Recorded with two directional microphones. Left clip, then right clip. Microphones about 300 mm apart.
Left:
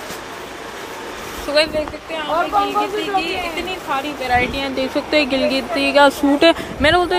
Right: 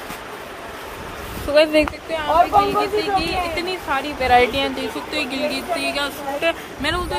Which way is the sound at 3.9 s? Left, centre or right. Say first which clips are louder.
Right 2 dB; centre.